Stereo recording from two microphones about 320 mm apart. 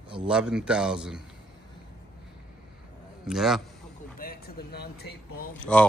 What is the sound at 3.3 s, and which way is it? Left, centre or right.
Speech, centre.